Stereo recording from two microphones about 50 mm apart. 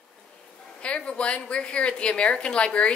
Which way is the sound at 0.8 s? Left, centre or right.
Left.